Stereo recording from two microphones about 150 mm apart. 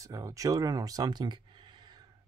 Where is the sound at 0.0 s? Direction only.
20° right (ahead or behind).